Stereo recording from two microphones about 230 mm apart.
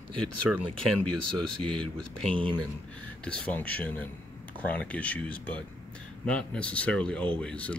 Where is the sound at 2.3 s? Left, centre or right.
Right.